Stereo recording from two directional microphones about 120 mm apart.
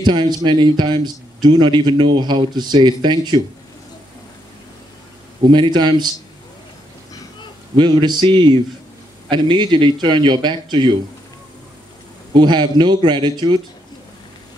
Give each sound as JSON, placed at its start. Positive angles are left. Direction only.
{"t": 0.0, "sound": "speech", "side_deg": -40}
{"t": 5.4, "sound": "speech", "side_deg": -40}
{"t": 7.7, "sound": "speech", "side_deg": -40}
{"t": 12.4, "sound": "speech", "side_deg": -40}